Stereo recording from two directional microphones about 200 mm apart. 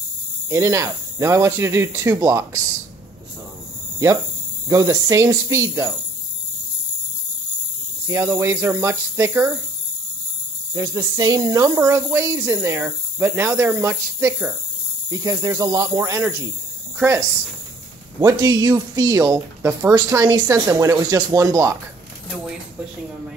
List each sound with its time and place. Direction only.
0.5 s speech: 15° right (ahead or behind)
4.6 s speech: 15° right (ahead or behind)
8.1 s speech: 15° right (ahead or behind)
10.7 s speech: 20° right (ahead or behind)
18.2 s speech: 20° right (ahead or behind)